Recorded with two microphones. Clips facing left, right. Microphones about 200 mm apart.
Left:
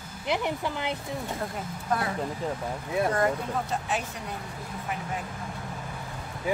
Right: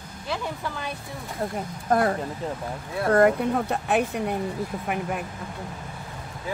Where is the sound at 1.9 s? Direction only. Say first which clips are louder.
Right 7 dB; 50° right (ahead or behind).